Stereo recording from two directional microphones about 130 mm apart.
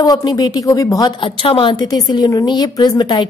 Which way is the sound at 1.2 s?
40° left (ahead or behind).